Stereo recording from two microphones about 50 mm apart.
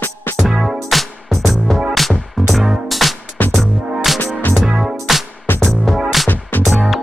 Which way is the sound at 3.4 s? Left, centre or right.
Left.